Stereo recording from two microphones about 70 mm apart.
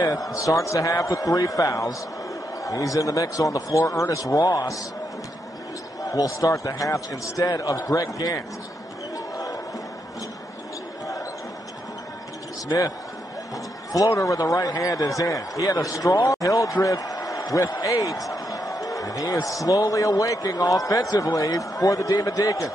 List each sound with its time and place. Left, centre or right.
0.0 s speech: left
6.0 s speech: left
13.9 s a man's voice: left